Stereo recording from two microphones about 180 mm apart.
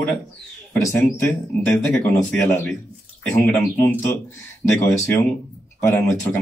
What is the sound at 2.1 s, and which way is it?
Speech, 15° left (ahead or behind).